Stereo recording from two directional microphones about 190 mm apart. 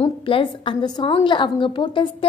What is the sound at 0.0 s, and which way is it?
A woman's voice, 25° left (ahead or behind).